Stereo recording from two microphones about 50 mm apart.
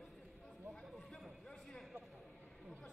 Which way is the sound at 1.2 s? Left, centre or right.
Centre.